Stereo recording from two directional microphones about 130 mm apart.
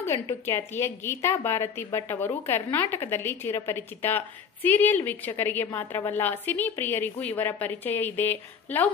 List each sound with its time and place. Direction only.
0.0 s a woman's voice: 20° left (ahead or behind)